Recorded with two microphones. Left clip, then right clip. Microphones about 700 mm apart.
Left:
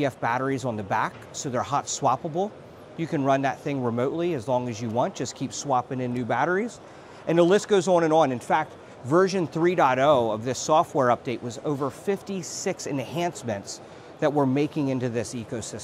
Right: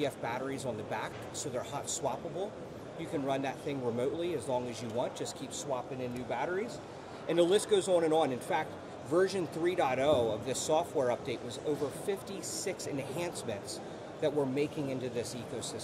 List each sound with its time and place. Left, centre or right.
0.0 s speech: left